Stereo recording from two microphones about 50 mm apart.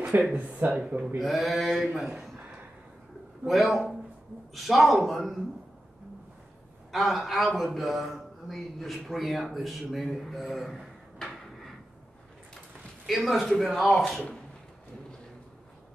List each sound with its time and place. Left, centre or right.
0.3 s speech: right
0.7 s speech: centre
1.0 s a man's voice: centre
3.4 s a man's voice: centre
6.9 s a man's voice: centre
13.0 s a man's voice: centre